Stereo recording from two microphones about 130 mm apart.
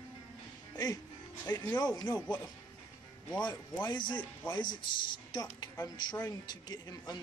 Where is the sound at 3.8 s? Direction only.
35° left (ahead or behind).